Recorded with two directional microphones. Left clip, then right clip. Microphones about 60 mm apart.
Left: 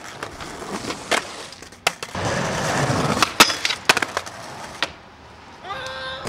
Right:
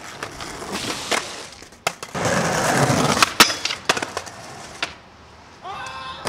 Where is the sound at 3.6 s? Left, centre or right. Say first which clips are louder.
Left 3 dB; left.